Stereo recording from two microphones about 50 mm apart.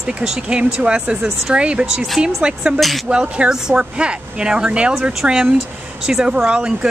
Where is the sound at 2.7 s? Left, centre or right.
Centre.